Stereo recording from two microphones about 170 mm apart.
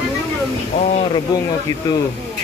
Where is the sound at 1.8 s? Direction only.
20° left (ahead or behind).